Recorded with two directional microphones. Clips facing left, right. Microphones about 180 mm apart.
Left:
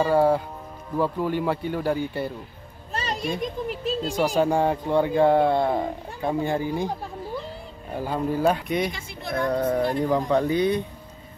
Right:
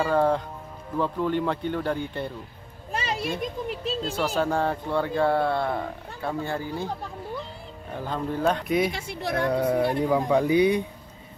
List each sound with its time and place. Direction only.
0.0 s speech: 10° left (ahead or behind)
2.9 s a sound: 10° right (ahead or behind)
4.1 s speech: 15° left (ahead or behind)
7.9 s speech: 10° left (ahead or behind)
8.9 s speech: 65° right (ahead or behind)
9.5 s speech: 10° right (ahead or behind)